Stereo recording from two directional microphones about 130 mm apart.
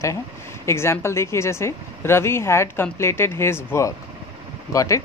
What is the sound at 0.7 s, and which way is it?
Speech, 20° left (ahead or behind).